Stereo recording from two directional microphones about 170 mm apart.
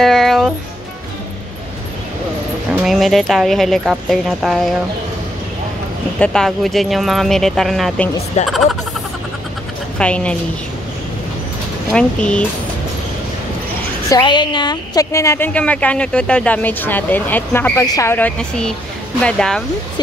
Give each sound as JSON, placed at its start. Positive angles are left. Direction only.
{"t": 0.0, "sound": "music", "side_deg": 0}
{"t": 2.7, "sound": "speech", "side_deg": 0}
{"t": 6.1, "sound": "speech", "side_deg": 5}
{"t": 8.4, "sound": "speech", "side_deg": 40}
{"t": 9.9, "sound": "a woman's voice", "side_deg": 5}
{"t": 11.9, "sound": "a woman's voice", "side_deg": 5}
{"t": 14.0, "sound": "a woman's voice", "side_deg": 25}